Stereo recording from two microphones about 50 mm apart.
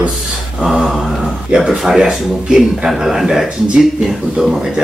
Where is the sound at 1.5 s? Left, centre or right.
Centre.